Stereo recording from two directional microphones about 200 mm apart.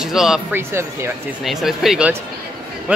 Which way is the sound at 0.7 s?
15° right (ahead or behind).